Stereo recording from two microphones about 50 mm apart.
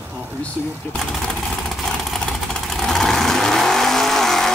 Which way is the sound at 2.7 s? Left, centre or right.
Centre.